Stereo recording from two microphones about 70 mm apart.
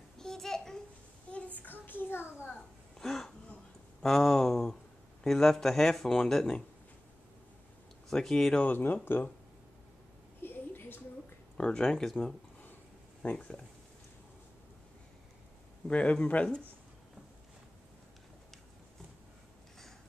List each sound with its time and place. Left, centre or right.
0.2 s babbling: centre
1.3 s child singing: left
3.0 s a sound: centre
5.2 s speech: centre
8.1 s speech: centre
8.6 s speech: left
10.4 s a sound: left
11.5 s speech: centre
13.2 s speech: centre
15.9 s speech: centre